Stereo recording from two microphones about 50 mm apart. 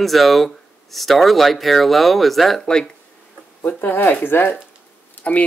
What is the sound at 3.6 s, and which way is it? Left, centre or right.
Speech, left.